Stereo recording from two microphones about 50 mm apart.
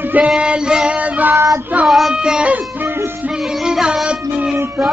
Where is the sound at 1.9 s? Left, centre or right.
Centre.